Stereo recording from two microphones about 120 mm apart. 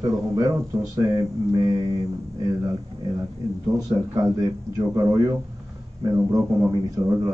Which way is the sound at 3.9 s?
30° right (ahead or behind).